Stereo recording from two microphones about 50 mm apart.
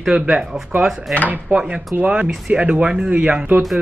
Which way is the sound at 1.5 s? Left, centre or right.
Right.